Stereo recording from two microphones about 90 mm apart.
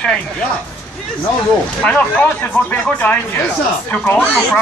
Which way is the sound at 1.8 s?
15° left (ahead or behind).